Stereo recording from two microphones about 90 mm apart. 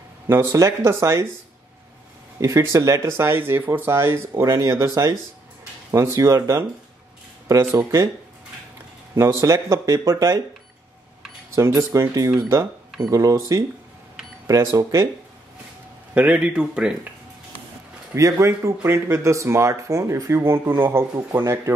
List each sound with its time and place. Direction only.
0.3 s speech: 30° right (ahead or behind)
2.4 s speech: 35° right (ahead or behind)
4.3 s speech: 45° right (ahead or behind)
9.1 s speech: 30° right (ahead or behind)
11.5 s speech: 35° right (ahead or behind)
16.2 s a man's voice: 15° right (ahead or behind)
18.1 s speech: 35° right (ahead or behind)